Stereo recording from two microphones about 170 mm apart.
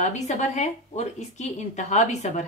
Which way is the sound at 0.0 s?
45° left (ahead or behind).